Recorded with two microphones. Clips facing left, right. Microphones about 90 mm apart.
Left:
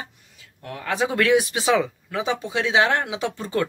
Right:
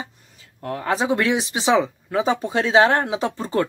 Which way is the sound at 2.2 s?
40° right (ahead or behind).